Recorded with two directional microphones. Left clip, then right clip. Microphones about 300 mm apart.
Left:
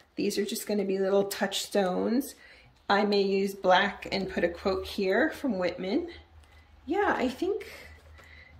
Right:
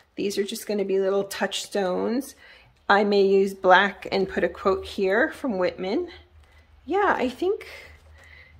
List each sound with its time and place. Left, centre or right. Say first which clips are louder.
0.1 s speech: right 3 dB; centre